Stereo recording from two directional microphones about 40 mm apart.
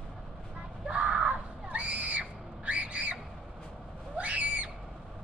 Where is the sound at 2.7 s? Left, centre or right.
Right.